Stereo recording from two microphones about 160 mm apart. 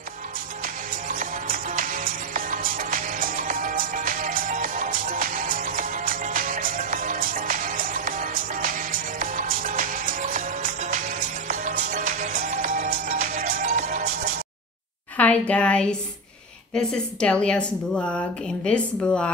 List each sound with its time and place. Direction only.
1.0 s music: 60° right (ahead or behind)
15.1 s a woman's voice: 10° left (ahead or behind)